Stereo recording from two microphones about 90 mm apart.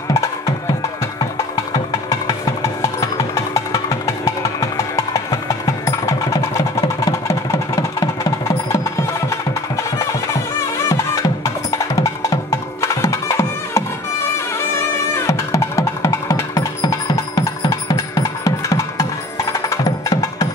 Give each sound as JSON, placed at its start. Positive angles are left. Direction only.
{"t": 0.1, "sound": "music", "side_deg": 40}
{"t": 1.9, "sound": "music", "side_deg": 40}
{"t": 10.9, "sound": "music", "side_deg": 40}
{"t": 15.2, "sound": "music", "side_deg": 35}